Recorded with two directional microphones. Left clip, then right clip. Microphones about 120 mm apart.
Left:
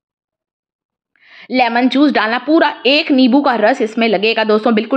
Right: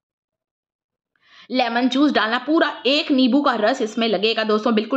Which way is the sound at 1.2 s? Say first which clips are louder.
Left 7 dB; 25° left (ahead or behind).